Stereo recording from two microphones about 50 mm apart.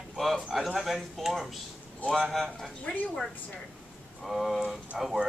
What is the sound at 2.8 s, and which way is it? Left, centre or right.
Speech, left.